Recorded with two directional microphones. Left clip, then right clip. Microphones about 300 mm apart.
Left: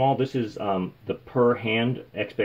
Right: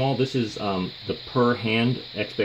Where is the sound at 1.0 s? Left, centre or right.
Centre.